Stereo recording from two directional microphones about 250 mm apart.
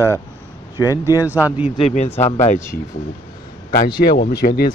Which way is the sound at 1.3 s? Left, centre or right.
Centre.